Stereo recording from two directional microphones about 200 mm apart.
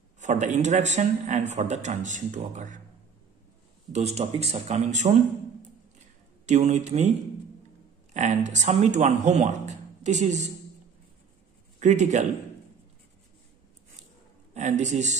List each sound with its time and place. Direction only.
0.2 s speech: 35° right (ahead or behind)
3.9 s speech: 35° right (ahead or behind)
6.4 s speech: 35° right (ahead or behind)
8.1 s speech: 35° right (ahead or behind)
11.8 s speech: 35° right (ahead or behind)
14.5 s speech: 35° right (ahead or behind)